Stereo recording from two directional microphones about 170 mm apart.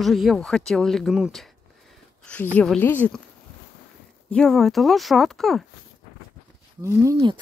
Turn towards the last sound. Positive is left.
turn(degrees=-25)  # may be behind; listen again after turning